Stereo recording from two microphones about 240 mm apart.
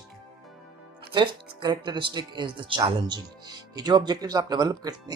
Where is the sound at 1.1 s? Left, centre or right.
Centre.